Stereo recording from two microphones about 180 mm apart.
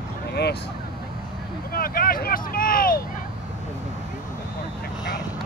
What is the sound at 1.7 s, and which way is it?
Speech, 55° left (ahead or behind).